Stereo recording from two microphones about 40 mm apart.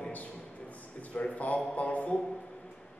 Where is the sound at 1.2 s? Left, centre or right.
Left.